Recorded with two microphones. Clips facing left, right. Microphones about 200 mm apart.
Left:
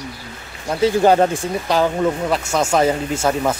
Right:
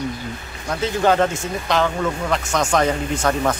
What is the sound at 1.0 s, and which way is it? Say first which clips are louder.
Speech: even; 15° left (ahead or behind).